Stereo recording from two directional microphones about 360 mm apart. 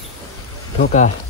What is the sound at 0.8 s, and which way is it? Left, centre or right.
Speech, left.